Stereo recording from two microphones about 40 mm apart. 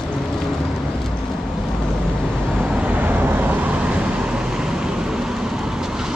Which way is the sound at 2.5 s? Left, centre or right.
Right.